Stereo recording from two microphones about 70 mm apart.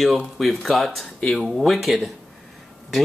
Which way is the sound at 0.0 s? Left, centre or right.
Centre.